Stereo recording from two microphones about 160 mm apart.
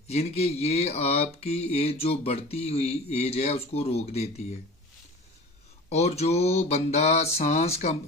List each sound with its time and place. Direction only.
0.1 s speech: 40° left (ahead or behind)
5.9 s speech: 40° left (ahead or behind)